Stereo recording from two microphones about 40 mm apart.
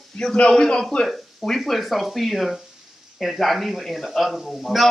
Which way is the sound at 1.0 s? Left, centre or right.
Centre.